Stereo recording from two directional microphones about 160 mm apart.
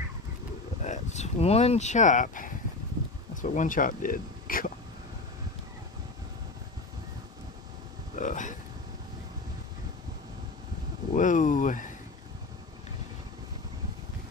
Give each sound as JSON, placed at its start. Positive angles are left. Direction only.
{"t": 0.8, "sound": "speech", "side_deg": 45}
{"t": 8.2, "sound": "a sound", "side_deg": 50}
{"t": 11.1, "sound": "speech", "side_deg": 55}